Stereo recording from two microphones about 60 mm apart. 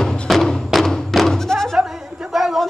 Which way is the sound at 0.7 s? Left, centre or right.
Centre.